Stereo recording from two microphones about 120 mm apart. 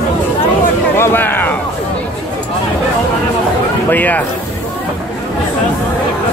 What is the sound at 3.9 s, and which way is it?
Speech, 15° left (ahead or behind).